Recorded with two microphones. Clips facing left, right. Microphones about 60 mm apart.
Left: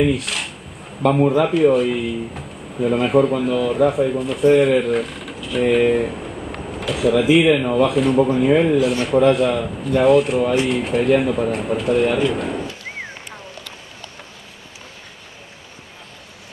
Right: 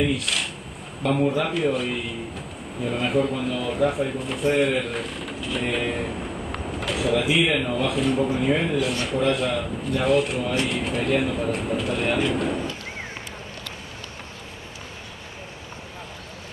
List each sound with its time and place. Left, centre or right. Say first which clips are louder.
0.1 s speech: left 3 dB; centre
1.0 s a man's voice: left 6 dB; left
1.4 s speech: left 9 dB; centre